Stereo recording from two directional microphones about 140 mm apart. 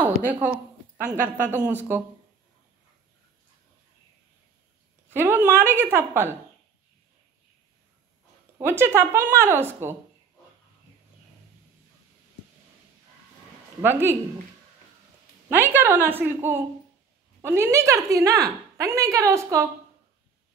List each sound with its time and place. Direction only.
0.0 s a sound: 10° right (ahead or behind)
0.9 s a woman's voice: 75° right (ahead or behind)
1.2 s speech: 15° right (ahead or behind)
5.1 s speech: 15° right (ahead or behind)
8.5 s speech: 15° right (ahead or behind)
13.7 s speech: 15° right (ahead or behind)
15.5 s a woman's voice: 15° right (ahead or behind)